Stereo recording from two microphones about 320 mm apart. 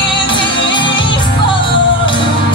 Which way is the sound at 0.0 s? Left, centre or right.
Centre.